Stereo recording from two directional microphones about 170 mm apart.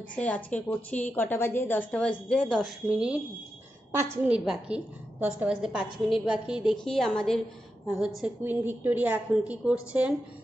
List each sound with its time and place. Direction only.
0.1 s a woman's voice: 10° left (ahead or behind)
4.0 s a woman's voice: 15° right (ahead or behind)